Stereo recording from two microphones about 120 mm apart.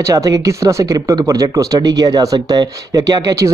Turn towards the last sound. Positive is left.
turn(degrees=-30)  # may be behind; listen again after turning